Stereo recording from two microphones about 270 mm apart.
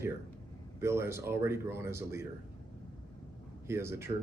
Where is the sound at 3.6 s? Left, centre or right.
Centre.